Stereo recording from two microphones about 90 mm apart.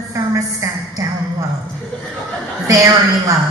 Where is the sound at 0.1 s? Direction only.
35° right (ahead or behind).